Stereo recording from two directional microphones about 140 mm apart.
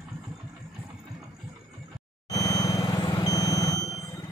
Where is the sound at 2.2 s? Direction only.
25° left (ahead or behind).